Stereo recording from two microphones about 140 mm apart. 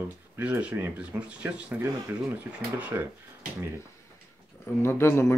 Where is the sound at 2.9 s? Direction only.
20° right (ahead or behind).